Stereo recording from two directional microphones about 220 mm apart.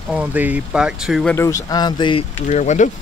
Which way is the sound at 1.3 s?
15° left (ahead or behind).